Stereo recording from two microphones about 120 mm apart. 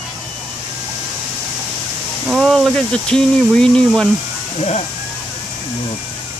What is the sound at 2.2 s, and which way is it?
Speech, centre (ahead or behind).